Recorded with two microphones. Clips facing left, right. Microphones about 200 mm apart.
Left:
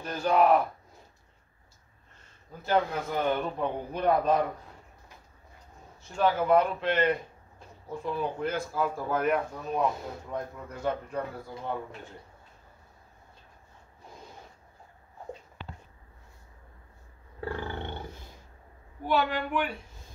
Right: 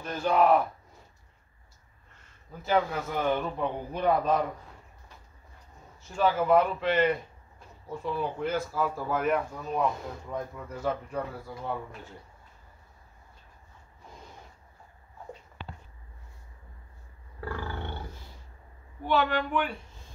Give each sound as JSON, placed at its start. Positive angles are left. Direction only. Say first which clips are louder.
{"t": 0.0, "sound": "speech", "louder": "even", "side_deg": 0}
{"t": 2.6, "sound": "speech", "louder": "even", "side_deg": -5}
{"t": 6.0, "sound": "speech", "louder": "even", "side_deg": -5}
{"t": 17.4, "sound": "roar", "louder": "left 2 dB", "side_deg": 25}
{"t": 19.0, "sound": "speech", "louder": "right 1 dB", "side_deg": 5}